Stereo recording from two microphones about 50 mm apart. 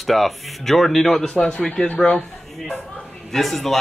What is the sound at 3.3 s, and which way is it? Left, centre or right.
Speech, centre.